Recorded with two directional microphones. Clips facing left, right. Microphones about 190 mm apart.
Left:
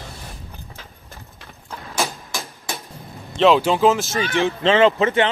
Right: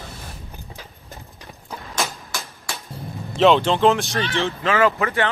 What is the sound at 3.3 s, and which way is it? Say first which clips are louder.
Speech: even; centre (ahead or behind).